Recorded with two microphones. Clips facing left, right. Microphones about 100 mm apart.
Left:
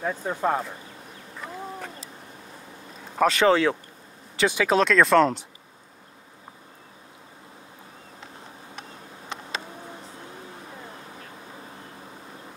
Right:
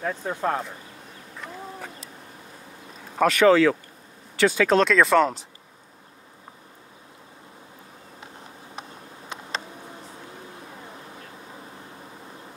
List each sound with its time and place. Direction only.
0.0 s speech: 5° left (ahead or behind)
3.3 s speech: 30° left (ahead or behind)
4.4 s speech: 15° left (ahead or behind)
4.7 s speech: centre (ahead or behind)